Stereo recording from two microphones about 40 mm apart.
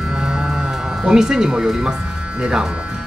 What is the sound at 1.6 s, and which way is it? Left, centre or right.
Speech, centre.